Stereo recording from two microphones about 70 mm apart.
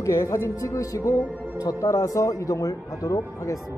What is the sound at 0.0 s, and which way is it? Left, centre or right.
Speech, left.